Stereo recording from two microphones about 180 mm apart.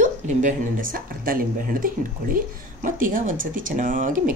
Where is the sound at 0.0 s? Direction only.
45° right (ahead or behind).